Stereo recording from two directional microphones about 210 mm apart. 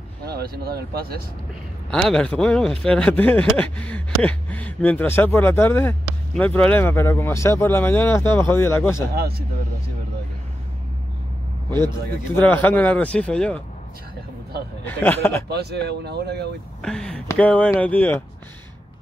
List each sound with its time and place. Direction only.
0.2 s speech: 50° right (ahead or behind)
1.9 s speech: centre (ahead or behind)
12.4 s speech: 10° left (ahead or behind)
14.9 s speech: 10° left (ahead or behind)
15.4 s speech: 50° right (ahead or behind)
16.8 s speech: 5° left (ahead or behind)